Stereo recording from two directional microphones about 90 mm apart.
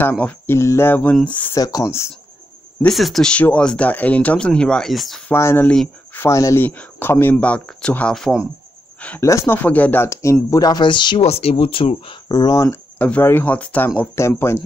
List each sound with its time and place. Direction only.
0.0 s speech: 20° left (ahead or behind)
0.6 s speech: 30° left (ahead or behind)
1.5 s speech: 40° left (ahead or behind)
2.9 s speech: centre (ahead or behind)
5.3 s speech: 25° left (ahead or behind)
6.6 s speech: 20° left (ahead or behind)
7.3 s speech: 15° left (ahead or behind)
9.2 s speech: 35° left (ahead or behind)
9.6 s speech: 20° left (ahead or behind)
10.0 s speech: 35° left (ahead or behind)
10.5 s speech: 45° left (ahead or behind); by 12.2 s 85° left
12.3 s speech: 50° left (ahead or behind)
13.2 s speech: 20° left (ahead or behind)
13.8 s speech: 30° left (ahead or behind)